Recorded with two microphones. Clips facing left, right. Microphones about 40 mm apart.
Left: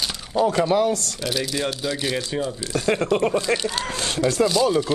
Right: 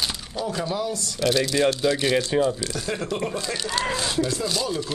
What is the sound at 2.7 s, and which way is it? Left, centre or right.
Speech, left.